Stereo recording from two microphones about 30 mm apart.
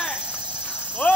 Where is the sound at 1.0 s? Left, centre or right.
Left.